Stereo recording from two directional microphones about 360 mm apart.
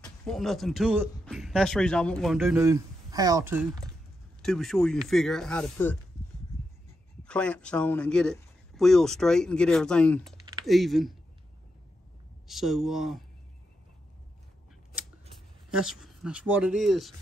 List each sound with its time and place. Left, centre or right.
0.2 s speech: centre
7.2 s speech: centre
12.4 s speech: centre
15.7 s speech: centre